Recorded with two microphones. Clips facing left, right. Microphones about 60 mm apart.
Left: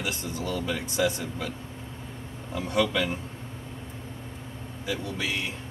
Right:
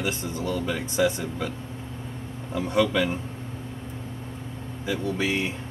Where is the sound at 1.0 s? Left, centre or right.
Centre.